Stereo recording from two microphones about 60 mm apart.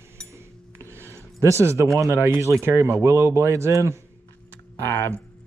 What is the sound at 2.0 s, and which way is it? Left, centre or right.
A man's voice, right.